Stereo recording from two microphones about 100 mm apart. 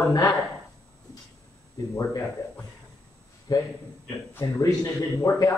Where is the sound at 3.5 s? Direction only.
40° left (ahead or behind).